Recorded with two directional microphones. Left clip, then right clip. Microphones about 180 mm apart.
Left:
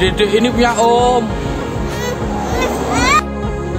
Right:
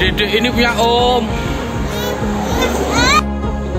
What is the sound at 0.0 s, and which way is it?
Music, 20° left (ahead or behind).